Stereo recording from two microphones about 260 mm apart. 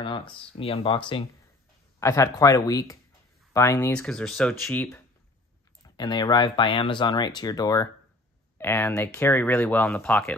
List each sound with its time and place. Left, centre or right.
0.0 s speech: centre
5.9 s speech: centre